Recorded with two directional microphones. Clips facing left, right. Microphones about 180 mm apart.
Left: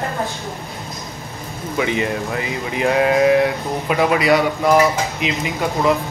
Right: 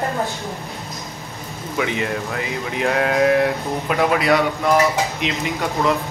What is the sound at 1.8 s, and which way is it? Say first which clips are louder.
Speech: left 2 dB; centre (ahead or behind).